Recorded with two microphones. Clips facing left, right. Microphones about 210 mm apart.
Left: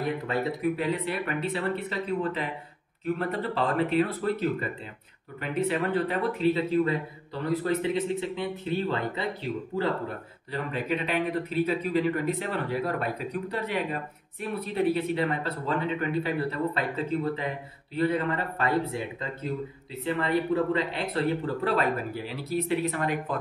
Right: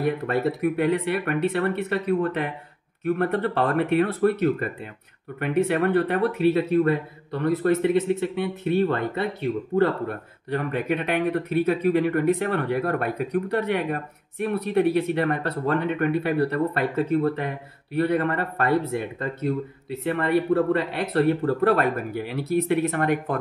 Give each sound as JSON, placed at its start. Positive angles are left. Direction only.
{"t": 0.3, "sound": "speech", "side_deg": -60}